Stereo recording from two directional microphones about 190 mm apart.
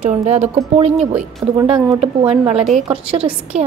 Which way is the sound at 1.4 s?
20° right (ahead or behind).